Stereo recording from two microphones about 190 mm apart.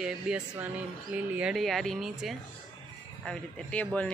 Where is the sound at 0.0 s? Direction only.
5° right (ahead or behind).